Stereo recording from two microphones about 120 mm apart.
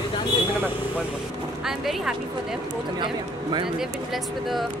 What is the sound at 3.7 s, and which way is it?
Speech, centre (ahead or behind).